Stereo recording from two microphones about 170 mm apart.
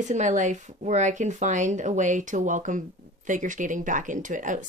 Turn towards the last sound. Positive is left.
turn(degrees=-50)  # may be behind; listen again after turning